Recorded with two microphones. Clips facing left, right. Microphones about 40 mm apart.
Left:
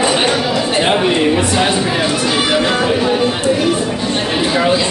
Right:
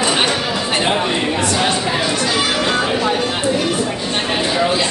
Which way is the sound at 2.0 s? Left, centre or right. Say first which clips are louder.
Left 2 dB; centre.